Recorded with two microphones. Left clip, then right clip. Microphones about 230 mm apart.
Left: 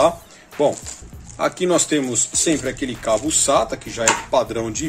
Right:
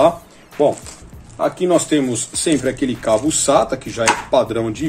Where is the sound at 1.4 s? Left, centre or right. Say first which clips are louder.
Right 3 dB; left.